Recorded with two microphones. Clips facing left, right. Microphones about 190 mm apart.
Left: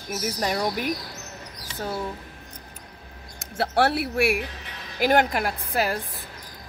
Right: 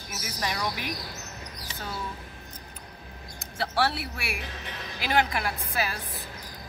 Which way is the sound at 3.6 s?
60° left (ahead or behind).